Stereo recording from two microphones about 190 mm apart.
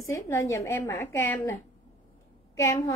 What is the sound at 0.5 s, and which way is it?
Speech, 15° left (ahead or behind).